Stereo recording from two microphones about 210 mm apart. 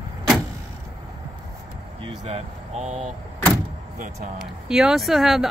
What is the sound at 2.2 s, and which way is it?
Speech, 30° right (ahead or behind).